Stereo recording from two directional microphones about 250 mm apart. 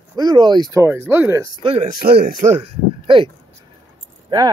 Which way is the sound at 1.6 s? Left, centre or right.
Right.